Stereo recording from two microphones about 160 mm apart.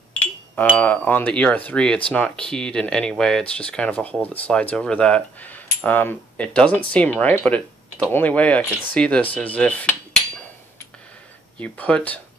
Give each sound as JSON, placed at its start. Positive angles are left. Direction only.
{"t": 0.7, "sound": "speech", "side_deg": 10}
{"t": 11.6, "sound": "speech", "side_deg": 10}